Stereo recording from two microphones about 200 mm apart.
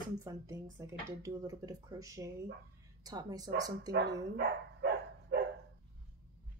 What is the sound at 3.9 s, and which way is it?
Speech, 55° right (ahead or behind).